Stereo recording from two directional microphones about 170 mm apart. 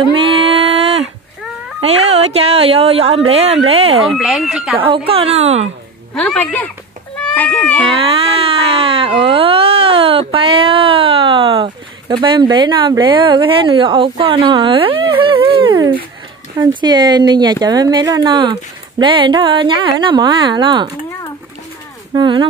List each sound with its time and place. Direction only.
0.1 s a sound: 30° right (ahead or behind)
1.8 s speech: 40° right (ahead or behind)
4.2 s speech: centre (ahead or behind)
4.7 s speech: 30° right (ahead or behind)
6.1 s speech: 5° left (ahead or behind)
7.2 s cat: 10° left (ahead or behind)
8.0 s a sound: 35° right (ahead or behind)
16.5 s speech: 25° right (ahead or behind)
22.1 s speech: 30° right (ahead or behind)